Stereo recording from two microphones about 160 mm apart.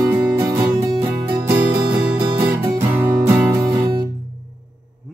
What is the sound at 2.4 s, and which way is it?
Music, 15° right (ahead or behind).